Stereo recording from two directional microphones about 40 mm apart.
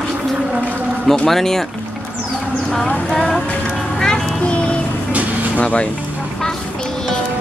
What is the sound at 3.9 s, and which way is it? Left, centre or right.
Music, centre.